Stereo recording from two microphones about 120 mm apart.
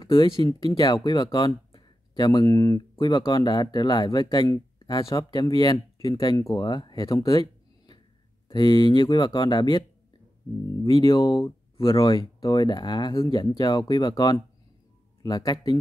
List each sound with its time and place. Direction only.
0.0 s speech: 40° left (ahead or behind)
11.1 s speech: 30° left (ahead or behind)
11.7 s a sound: 45° left (ahead or behind)
12.0 s speech: 30° left (ahead or behind)